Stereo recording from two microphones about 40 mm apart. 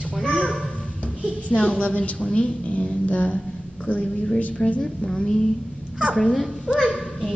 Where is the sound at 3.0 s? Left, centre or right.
Left.